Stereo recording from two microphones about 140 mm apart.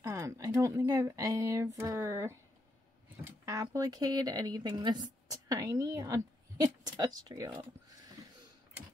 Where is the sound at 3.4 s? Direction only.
25° right (ahead or behind).